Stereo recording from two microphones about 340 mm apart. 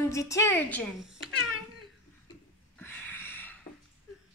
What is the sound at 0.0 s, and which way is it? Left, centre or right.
A woman's voice, centre.